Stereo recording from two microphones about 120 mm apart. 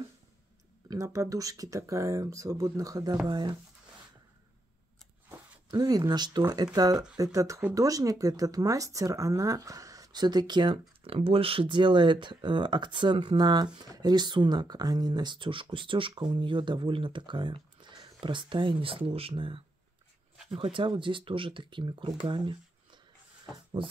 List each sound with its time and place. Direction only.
0.8 s speech: 25° right (ahead or behind)
5.3 s speech: 30° right (ahead or behind)
11.1 s speech: 55° right (ahead or behind)